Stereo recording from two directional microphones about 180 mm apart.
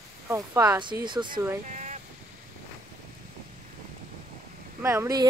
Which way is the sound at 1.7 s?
40° right (ahead or behind).